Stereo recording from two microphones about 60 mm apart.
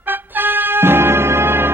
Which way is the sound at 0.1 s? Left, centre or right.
Right.